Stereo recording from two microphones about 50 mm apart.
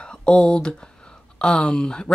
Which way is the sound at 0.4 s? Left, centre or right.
Centre.